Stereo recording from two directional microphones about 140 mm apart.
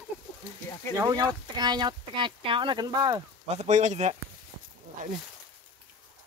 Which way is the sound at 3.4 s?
55° right (ahead or behind).